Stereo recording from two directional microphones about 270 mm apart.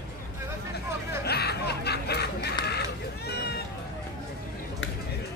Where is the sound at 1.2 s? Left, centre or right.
Left.